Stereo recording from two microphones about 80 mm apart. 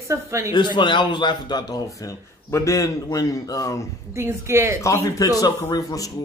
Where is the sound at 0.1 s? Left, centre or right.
Right.